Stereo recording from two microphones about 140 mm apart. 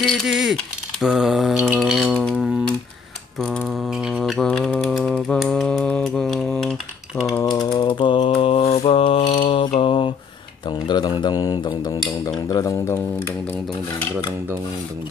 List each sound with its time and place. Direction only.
0.0 s mantra: 5° right (ahead or behind)
1.8 s dishes: 5° right (ahead or behind)
3.3 s mantra: centre (ahead or behind)
7.4 s mantra: 30° left (ahead or behind)
9.8 s a sound: 40° left (ahead or behind)
12.3 s cutlery: 25° left (ahead or behind)